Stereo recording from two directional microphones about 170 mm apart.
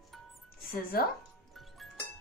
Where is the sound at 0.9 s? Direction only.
60° left (ahead or behind).